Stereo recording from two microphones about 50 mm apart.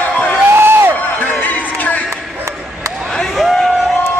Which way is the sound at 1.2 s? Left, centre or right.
Left.